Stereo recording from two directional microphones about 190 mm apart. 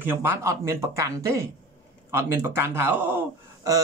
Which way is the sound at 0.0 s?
15° right (ahead or behind).